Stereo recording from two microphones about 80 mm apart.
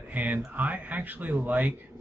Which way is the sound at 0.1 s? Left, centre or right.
Right.